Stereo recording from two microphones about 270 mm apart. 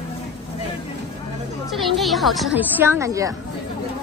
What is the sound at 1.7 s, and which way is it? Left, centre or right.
A woman's voice, centre.